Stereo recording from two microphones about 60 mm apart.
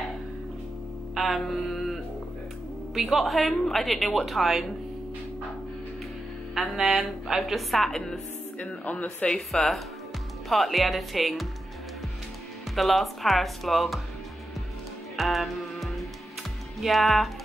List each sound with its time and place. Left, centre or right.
1.1 s mantra: centre
2.9 s a woman's voice: centre
6.5 s a woman's voice: centre
8.5 s speech: left
9.5 s a woman's voice: centre
12.7 s a woman's voice: centre
15.1 s music: centre
16.8 s a woman's voice: centre